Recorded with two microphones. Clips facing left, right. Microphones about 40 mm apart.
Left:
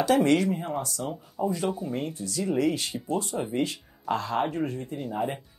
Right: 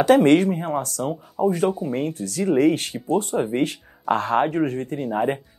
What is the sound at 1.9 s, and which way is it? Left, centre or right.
Speech, right.